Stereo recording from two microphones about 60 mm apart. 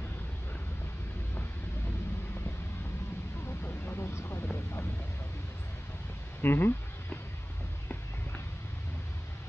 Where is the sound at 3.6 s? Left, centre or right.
Left.